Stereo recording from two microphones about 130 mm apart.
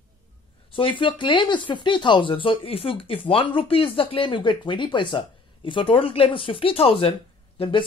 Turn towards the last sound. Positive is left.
turn(degrees=40)  # may be behind; listen again after turning